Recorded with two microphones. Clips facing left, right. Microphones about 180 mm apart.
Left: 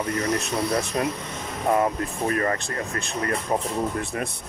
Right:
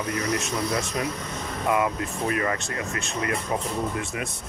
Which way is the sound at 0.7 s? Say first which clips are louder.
Left 3 dB; 35° left (ahead or behind).